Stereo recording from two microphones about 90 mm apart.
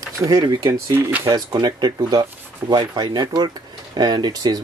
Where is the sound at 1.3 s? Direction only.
50° right (ahead or behind).